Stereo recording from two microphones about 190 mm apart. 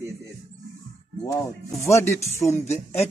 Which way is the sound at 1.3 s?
15° left (ahead or behind).